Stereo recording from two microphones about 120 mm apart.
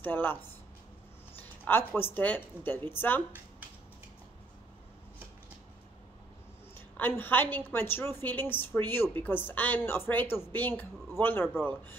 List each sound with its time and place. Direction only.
0.0 s a woman's voice: 15° left (ahead or behind)
1.4 s a sound: 15° left (ahead or behind)
2.0 s a woman's voice: 15° left (ahead or behind)
7.2 s a woman's voice: 15° left (ahead or behind)